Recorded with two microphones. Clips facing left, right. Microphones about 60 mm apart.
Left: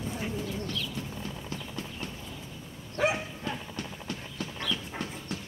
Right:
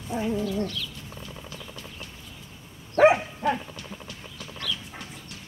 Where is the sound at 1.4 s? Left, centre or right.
Left.